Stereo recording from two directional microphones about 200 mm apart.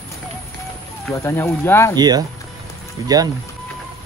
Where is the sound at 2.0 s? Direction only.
20° right (ahead or behind).